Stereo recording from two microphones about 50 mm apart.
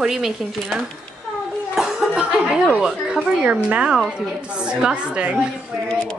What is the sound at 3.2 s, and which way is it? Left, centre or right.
A woman's voice, right.